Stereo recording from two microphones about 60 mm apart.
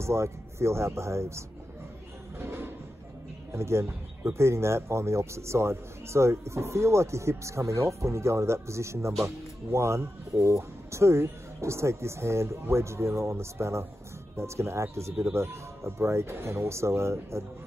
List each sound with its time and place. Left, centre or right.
0.0 s speech: right
2.3 s a sound: right
3.5 s speech: right